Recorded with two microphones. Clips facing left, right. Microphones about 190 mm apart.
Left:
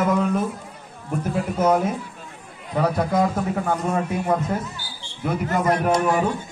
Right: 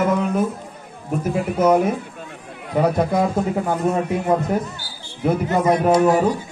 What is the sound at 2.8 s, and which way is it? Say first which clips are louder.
A man's voice: right 2 dB; 20° right (ahead or behind).